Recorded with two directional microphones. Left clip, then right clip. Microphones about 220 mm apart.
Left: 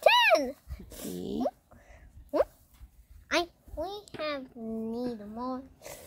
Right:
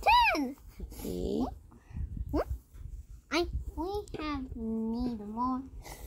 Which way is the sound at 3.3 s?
30° left (ahead or behind).